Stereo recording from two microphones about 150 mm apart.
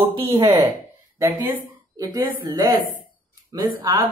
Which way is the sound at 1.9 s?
25° right (ahead or behind).